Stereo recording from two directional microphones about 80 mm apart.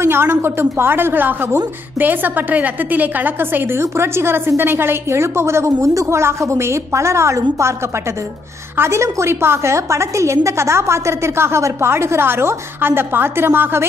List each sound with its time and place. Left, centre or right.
0.0 s a woman's voice: right